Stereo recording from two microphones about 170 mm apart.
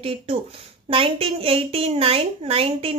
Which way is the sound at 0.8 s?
35° right (ahead or behind).